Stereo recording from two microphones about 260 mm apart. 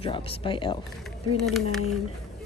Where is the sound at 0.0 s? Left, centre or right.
Left.